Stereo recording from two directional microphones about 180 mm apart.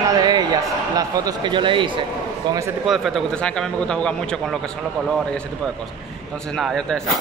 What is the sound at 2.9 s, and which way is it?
A man's voice, centre (ahead or behind).